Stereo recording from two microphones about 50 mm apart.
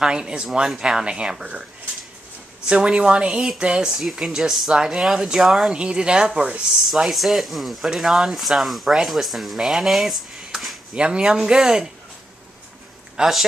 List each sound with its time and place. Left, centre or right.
0.0 s speech: centre
2.7 s speech: centre
3.9 s speech: centre
4.7 s speech: centre
5.7 s speech: centre
6.9 s speech: centre
11.0 s speech: centre
13.1 s speech: centre